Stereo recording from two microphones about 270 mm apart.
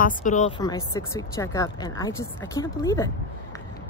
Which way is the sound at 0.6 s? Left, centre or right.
Centre.